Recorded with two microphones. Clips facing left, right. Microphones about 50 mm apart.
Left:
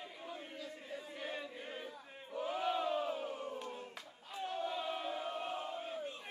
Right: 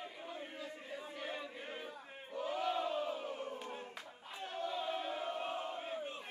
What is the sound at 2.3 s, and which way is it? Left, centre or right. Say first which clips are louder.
Battle cry: even; centre.